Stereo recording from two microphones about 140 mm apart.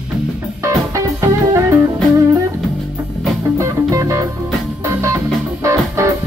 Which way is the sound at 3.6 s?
20° right (ahead or behind).